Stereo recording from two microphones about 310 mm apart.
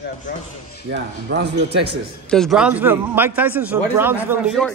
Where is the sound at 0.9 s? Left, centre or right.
Right.